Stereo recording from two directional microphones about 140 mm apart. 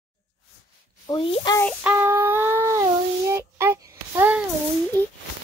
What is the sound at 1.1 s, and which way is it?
Speech, 40° left (ahead or behind).